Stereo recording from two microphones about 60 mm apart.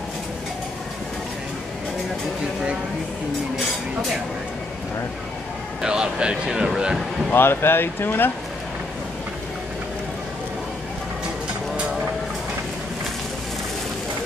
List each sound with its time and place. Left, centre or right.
5.8 s speech: centre
7.3 s speech: left